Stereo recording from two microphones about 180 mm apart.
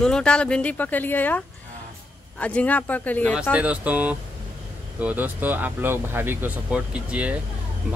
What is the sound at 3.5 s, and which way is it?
Speech, 5° right (ahead or behind).